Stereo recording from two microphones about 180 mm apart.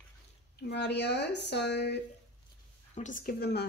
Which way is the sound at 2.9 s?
45° left (ahead or behind).